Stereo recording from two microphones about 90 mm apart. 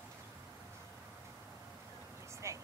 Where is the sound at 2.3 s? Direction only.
35° right (ahead or behind).